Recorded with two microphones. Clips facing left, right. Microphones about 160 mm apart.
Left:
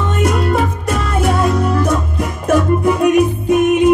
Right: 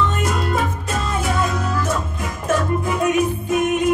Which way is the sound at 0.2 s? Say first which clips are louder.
Left 6 dB; 60° left (ahead or behind).